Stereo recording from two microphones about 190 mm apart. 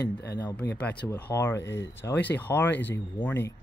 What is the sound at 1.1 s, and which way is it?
Speech, 10° left (ahead or behind).